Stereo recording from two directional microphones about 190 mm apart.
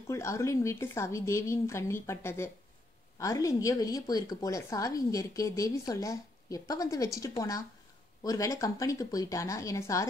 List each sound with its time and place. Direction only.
0.1 s a woman's voice: 15° left (ahead or behind)